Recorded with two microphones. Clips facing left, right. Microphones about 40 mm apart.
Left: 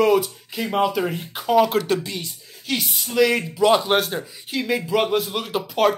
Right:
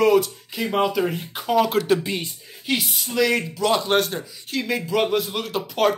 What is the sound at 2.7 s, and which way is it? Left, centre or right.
Speech, centre.